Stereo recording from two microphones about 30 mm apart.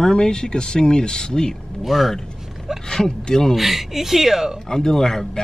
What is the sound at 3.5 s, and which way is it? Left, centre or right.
A woman's voice, centre.